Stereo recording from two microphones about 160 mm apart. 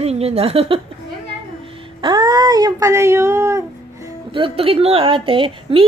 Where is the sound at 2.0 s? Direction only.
25° right (ahead or behind).